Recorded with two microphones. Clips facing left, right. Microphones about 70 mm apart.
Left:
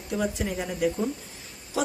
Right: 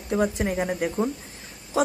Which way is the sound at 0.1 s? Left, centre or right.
Right.